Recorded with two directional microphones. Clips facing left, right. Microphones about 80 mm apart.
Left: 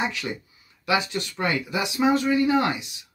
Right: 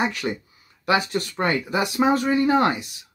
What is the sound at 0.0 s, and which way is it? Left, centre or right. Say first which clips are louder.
Speech: right 3 dB; right.